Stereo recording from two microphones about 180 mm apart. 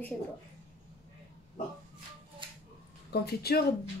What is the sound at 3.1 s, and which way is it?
Speech, 60° left (ahead or behind).